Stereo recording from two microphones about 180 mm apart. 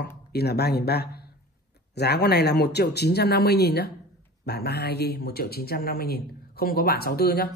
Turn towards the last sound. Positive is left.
turn(degrees=60)  # may be behind; listen again after turning